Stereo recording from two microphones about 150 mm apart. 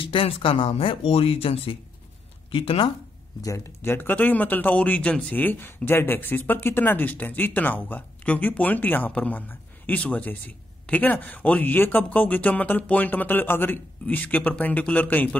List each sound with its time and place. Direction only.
0.0 s speech: 35° left (ahead or behind)
3.4 s speech: 20° left (ahead or behind)